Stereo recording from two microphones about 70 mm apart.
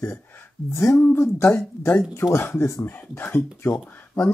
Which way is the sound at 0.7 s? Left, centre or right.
Left.